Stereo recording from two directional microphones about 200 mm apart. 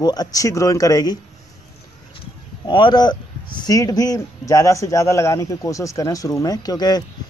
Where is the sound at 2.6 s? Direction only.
20° left (ahead or behind).